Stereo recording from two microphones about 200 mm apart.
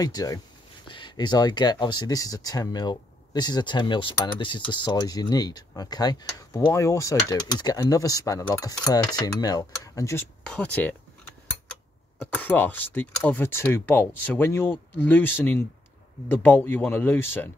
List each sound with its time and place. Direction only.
0.0 s speech: 20° left (ahead or behind)
12.4 s speech: 10° left (ahead or behind)